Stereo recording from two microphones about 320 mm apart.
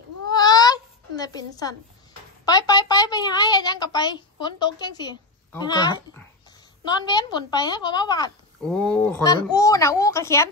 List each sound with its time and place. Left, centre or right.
0.3 s baby cry: centre
2.4 s a woman's voice: centre